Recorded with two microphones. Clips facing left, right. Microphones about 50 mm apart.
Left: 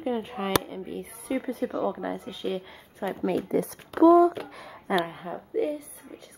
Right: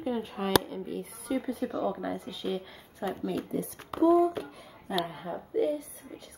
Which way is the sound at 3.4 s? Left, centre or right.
Left.